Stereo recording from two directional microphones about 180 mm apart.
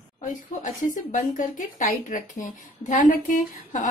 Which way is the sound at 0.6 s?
45° left (ahead or behind).